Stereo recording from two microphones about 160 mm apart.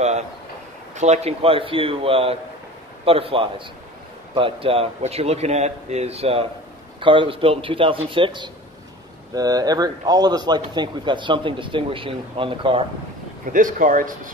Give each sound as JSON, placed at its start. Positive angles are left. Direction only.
{"t": 0.9, "sound": "speech", "side_deg": -45}
{"t": 13.5, "sound": "speech", "side_deg": -55}